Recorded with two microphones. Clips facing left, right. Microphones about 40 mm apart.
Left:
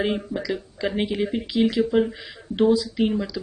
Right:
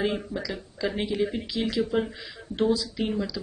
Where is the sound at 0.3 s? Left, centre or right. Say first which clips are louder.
Left 5 dB; centre.